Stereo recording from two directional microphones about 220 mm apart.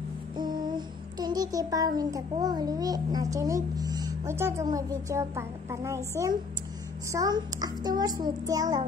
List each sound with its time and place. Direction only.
0.4 s child singing: 20° right (ahead or behind)
7.1 s a child's voice: 15° right (ahead or behind)